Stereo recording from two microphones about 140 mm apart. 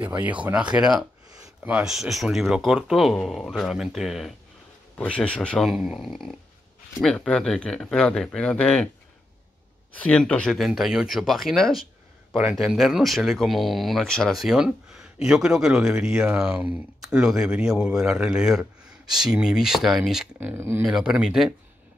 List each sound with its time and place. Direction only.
0.2 s speech: 10° right (ahead or behind); by 8.8 s 10° left (ahead or behind)
9.9 s speech: 10° left (ahead or behind)
20.3 s speech: 15° right (ahead or behind)